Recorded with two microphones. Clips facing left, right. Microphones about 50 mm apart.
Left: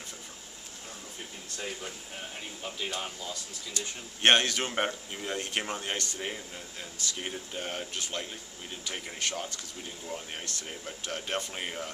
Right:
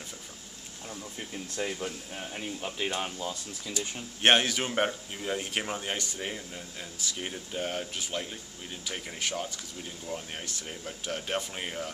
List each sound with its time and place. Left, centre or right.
1.6 s speech: centre
3.7 s speech: centre
10.7 s speech: centre